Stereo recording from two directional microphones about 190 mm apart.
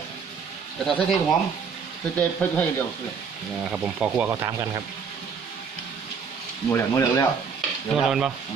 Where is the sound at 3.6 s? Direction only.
5° right (ahead or behind).